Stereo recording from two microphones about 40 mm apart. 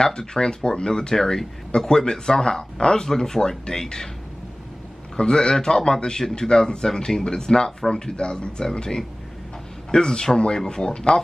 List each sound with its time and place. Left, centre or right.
0.0 s speech: centre
5.1 s a man's voice: left